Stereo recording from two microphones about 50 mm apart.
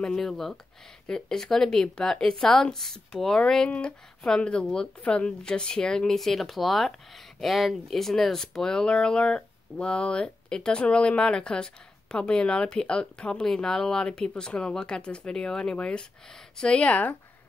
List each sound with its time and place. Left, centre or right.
0.0 s speech: centre; by 17.2 s left